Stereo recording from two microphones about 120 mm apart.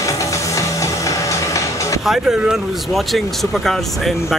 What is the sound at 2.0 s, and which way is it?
Speech, 5° right (ahead or behind).